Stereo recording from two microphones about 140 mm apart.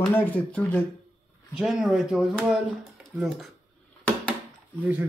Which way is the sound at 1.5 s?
5° right (ahead or behind).